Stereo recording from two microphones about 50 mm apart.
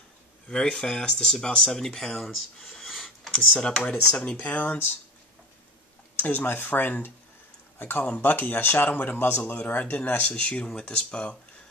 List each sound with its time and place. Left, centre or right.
0.5 s speech: centre
3.3 s speech: centre
3.8 s speech: left
6.1 s speech: left